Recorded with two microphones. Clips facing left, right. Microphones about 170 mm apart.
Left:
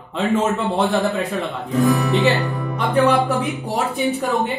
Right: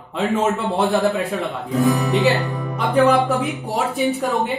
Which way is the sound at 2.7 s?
Centre (ahead or behind).